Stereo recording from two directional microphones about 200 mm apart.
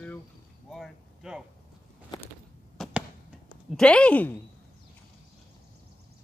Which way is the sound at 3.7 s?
5° left (ahead or behind).